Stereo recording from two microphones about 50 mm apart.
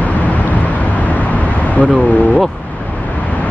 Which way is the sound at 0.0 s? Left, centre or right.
Left.